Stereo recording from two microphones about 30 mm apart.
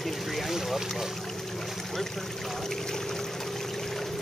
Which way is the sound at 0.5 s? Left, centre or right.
Centre.